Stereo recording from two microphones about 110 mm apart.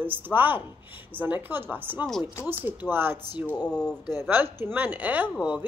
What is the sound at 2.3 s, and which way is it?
Speech, 25° left (ahead or behind).